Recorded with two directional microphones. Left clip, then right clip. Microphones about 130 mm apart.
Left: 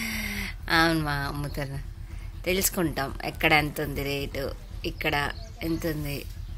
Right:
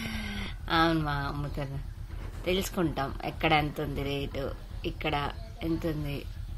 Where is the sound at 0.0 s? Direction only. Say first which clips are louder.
Left 6 dB; centre (ahead or behind).